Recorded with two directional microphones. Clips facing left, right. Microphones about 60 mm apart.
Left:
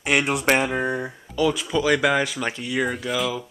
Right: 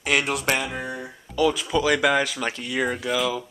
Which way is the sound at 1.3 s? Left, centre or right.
Centre.